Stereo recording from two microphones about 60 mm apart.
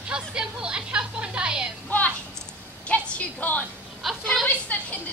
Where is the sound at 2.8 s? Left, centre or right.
Left.